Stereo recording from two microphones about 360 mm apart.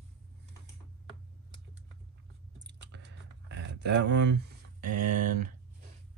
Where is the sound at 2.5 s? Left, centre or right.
Right.